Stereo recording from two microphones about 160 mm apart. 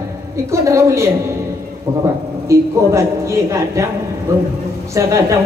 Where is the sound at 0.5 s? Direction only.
20° right (ahead or behind).